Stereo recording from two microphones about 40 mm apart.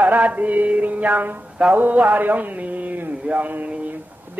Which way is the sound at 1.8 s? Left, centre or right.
Right.